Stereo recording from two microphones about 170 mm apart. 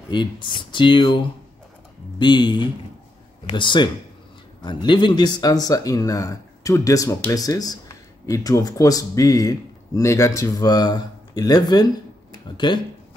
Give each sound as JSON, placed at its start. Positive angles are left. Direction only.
{"t": 0.1, "sound": "speech", "side_deg": 25}